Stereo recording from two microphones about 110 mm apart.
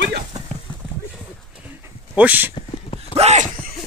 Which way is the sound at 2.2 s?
15° right (ahead or behind).